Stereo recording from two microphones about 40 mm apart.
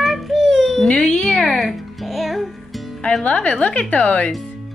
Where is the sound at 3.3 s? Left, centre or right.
Left.